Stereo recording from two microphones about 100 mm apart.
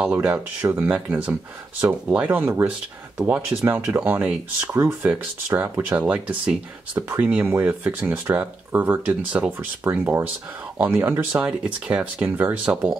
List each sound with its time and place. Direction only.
0.0 s speech: 15° right (ahead or behind)
4.7 s speech: 25° right (ahead or behind)